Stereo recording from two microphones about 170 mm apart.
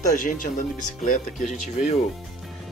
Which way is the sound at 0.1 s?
50° left (ahead or behind).